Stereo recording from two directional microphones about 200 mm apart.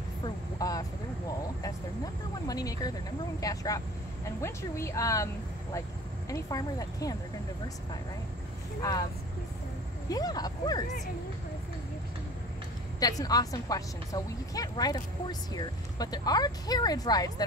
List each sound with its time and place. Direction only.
0.2 s vehicle: 20° left (ahead or behind)
2.4 s speech: 15° left (ahead or behind)
10.0 s a woman's voice: 20° left (ahead or behind)
13.0 s a woman's voice: 20° left (ahead or behind)